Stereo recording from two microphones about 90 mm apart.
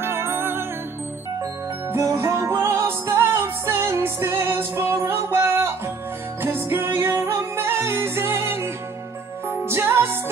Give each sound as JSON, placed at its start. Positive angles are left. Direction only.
{"t": 0.0, "sound": "music", "side_deg": -25}
{"t": 1.9, "sound": "music", "side_deg": -30}
{"t": 9.7, "sound": "music", "side_deg": -30}